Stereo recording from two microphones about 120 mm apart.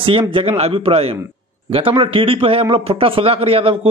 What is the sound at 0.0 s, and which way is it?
Speech, 50° right (ahead or behind).